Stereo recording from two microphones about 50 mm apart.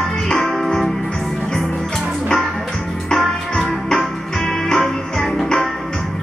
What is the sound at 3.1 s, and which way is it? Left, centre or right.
Music, centre.